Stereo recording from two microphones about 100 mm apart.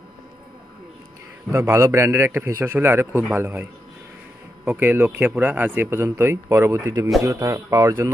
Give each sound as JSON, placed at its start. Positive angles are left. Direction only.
{"t": 1.5, "sound": "speech", "side_deg": -30}
{"t": 4.6, "sound": "speech", "side_deg": -20}